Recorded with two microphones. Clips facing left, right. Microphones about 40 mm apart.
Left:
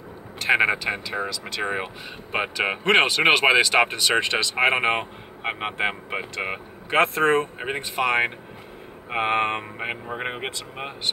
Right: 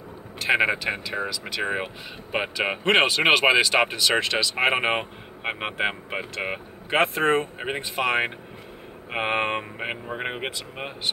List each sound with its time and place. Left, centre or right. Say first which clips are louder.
0.5 s speech: left 1 dB; centre
4.6 s speech: left 2 dB; centre